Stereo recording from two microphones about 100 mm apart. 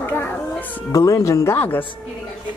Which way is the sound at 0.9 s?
35° left (ahead or behind).